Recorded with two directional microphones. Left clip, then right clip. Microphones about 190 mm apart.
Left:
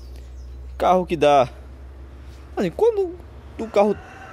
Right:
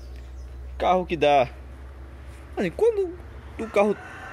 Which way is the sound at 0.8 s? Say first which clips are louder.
Left 4 dB; 30° left (ahead or behind).